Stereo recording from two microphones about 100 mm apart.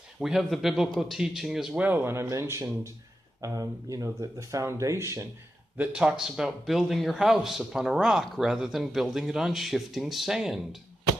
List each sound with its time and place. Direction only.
0.2 s a man's voice: centre (ahead or behind); by 5.3 s 30° right (ahead or behind)
5.8 s a man's voice: 10° right (ahead or behind)